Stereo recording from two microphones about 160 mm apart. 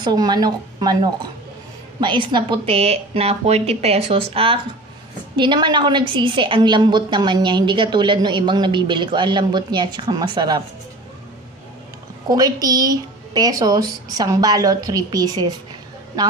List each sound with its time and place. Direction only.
0.0 s a woman's voice: 25° right (ahead or behind)
12.3 s a woman's voice: 25° right (ahead or behind)